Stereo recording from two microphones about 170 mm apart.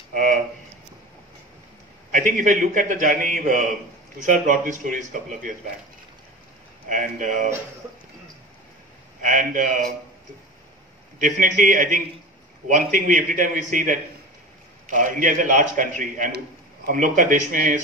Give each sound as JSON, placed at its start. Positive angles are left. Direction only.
{"t": 0.1, "sound": "speech", "side_deg": -50}
{"t": 2.1, "sound": "a man's voice", "side_deg": -50}
{"t": 6.9, "sound": "a man's voice", "side_deg": -50}
{"t": 9.2, "sound": "a man's voice", "side_deg": -50}
{"t": 11.1, "sound": "a man's voice", "side_deg": -50}